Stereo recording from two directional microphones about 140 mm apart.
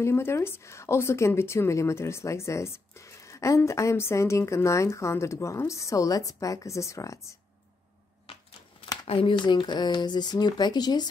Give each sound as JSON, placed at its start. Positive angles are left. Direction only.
{"t": 0.0, "sound": "a woman's voice", "side_deg": 20}
{"t": 8.3, "sound": "a sound", "side_deg": 45}
{"t": 9.0, "sound": "speech", "side_deg": 40}